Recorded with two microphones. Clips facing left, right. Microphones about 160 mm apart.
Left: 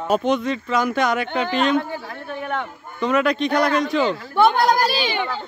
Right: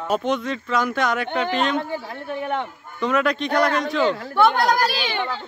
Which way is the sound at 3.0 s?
Centre (ahead or behind).